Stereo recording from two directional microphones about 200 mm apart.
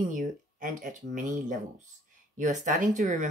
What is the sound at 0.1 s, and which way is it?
Speech, 40° right (ahead or behind).